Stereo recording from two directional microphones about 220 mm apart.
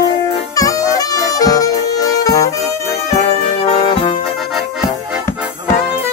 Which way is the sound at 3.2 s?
25° left (ahead or behind).